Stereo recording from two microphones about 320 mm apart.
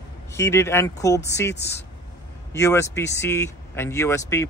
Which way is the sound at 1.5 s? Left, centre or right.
Left.